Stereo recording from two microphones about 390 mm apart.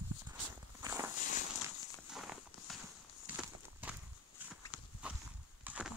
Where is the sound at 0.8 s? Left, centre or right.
Centre.